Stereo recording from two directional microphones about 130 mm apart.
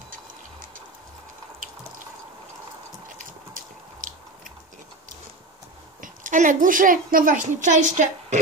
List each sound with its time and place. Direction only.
0.1 s music: 90° right
3.2 s a sound: 90° right
5.9 s a woman's voice: 85° right